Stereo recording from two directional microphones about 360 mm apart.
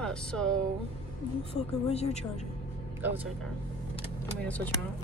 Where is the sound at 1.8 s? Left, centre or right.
Centre.